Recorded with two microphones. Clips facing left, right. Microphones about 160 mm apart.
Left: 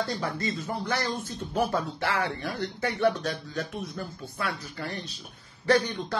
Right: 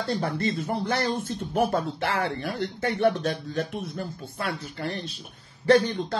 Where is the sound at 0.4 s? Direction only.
55° right (ahead or behind).